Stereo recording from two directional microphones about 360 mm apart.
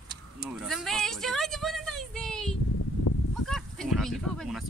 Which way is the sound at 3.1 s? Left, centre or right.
Left.